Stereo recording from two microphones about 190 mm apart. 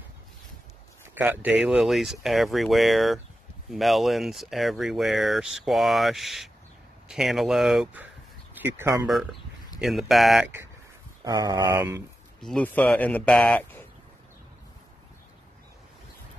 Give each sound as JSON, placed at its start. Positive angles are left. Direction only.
{"t": 1.0, "sound": "speech", "side_deg": -10}
{"t": 9.0, "sound": "speech", "side_deg": 0}
{"t": 11.2, "sound": "a sound", "side_deg": -20}
{"t": 12.4, "sound": "speech", "side_deg": 5}